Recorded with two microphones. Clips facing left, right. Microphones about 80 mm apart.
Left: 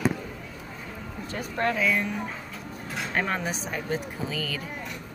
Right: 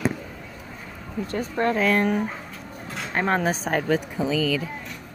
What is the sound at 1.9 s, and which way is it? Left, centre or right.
Speech, right.